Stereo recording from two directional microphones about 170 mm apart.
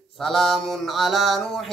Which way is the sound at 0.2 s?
Centre (ahead or behind).